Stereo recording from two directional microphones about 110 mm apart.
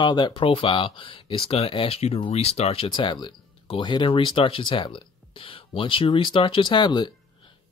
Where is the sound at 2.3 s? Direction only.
70° left (ahead or behind); by 7.1 s 45° left (ahead or behind).